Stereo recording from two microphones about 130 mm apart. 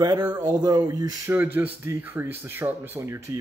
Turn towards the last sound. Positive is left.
turn(degrees=-25)  # may be behind; listen again after turning